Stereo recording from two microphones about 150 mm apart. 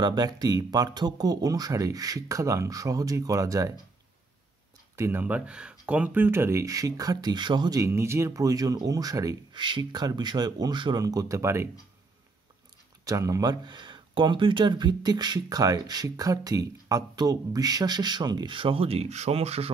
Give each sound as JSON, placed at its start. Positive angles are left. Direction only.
{"t": 0.0, "sound": "speech", "side_deg": -25}
{"t": 4.9, "sound": "speech", "side_deg": -15}
{"t": 13.0, "sound": "speech", "side_deg": -20}